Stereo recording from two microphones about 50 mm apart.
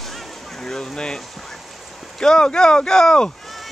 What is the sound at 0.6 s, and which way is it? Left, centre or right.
Speech, centre.